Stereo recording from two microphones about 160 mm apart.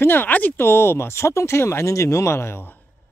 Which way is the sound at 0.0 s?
15° left (ahead or behind).